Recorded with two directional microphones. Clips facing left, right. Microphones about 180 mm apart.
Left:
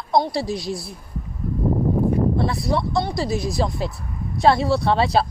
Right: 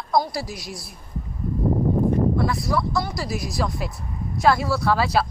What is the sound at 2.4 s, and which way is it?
Speech, 25° left (ahead or behind).